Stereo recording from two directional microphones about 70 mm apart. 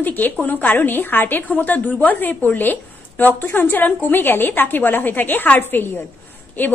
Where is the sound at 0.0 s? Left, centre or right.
Left.